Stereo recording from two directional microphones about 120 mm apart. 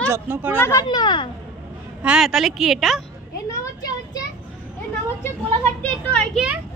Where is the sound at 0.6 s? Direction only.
20° left (ahead or behind).